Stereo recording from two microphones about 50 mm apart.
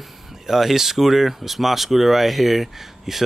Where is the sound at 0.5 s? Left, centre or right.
Centre.